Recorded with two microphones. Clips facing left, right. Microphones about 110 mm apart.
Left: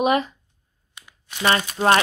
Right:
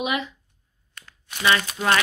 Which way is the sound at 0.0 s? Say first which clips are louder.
Left 7 dB; 40° left (ahead or behind).